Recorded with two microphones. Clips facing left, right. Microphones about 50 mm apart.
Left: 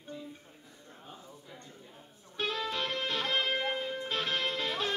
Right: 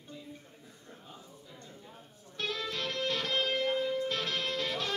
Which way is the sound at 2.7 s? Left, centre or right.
Left.